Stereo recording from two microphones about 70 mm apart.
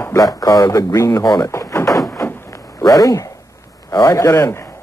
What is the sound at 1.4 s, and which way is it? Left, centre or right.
Door, left.